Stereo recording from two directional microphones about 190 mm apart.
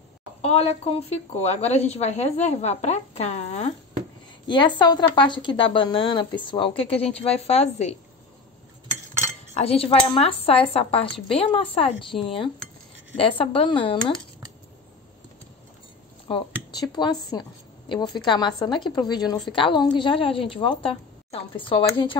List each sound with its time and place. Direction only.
0.4 s a woman's voice: 35° left (ahead or behind)
4.5 s a woman's voice: 25° left (ahead or behind)
9.5 s cutlery: 30° left (ahead or behind)
9.8 s a woman's voice: 30° left (ahead or behind)
16.7 s a woman's voice: 20° left (ahead or behind)